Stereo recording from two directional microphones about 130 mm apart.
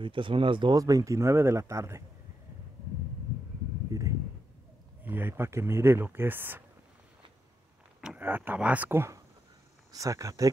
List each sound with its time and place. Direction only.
0.0 s speech: 40° right (ahead or behind); by 2.0 s 20° right (ahead or behind)
5.0 s speech: 15° right (ahead or behind)
8.0 s speech: 10° right (ahead or behind); by 10.5 s 25° right (ahead or behind)